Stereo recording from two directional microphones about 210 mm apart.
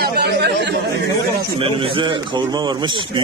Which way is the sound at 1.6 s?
25° right (ahead or behind).